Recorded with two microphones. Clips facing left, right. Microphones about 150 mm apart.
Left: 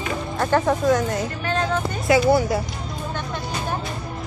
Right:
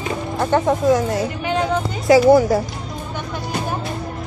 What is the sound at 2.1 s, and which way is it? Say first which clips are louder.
Speech: right 6 dB; 40° right (ahead or behind).